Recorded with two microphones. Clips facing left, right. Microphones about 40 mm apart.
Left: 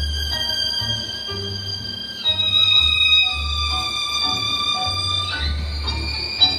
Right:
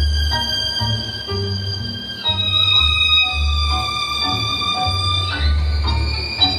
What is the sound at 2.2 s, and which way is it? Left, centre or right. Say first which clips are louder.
Organ: even; centre.